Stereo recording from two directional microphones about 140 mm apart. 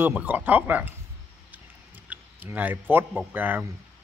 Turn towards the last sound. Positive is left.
turn(degrees=-15)  # may be behind; listen again after turning